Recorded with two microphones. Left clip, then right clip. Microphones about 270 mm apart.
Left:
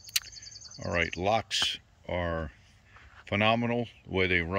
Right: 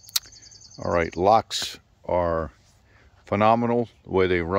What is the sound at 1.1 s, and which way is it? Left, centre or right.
Speech, centre.